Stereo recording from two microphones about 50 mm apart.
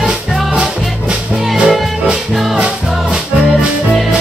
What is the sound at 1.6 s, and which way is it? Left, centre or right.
Music, centre.